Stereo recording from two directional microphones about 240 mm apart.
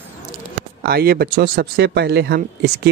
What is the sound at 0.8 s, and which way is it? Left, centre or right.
Speech, right.